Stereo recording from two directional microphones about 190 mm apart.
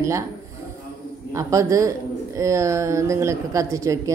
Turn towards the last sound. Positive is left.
turn(degrees=-15)  # may be behind; listen again after turning